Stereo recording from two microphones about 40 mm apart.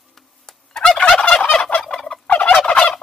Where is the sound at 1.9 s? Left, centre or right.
Left.